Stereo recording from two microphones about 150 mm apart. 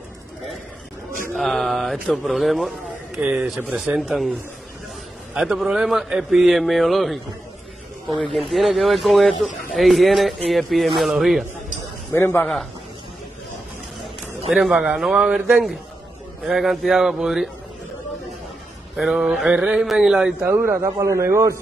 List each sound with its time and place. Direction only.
1.3 s a man's voice: centre (ahead or behind)
12.1 s a man's voice: 15° left (ahead or behind)
14.7 s a man's voice: 10° right (ahead or behind)
18.9 s speech: 5° right (ahead or behind); by 21.5 s 20° right (ahead or behind)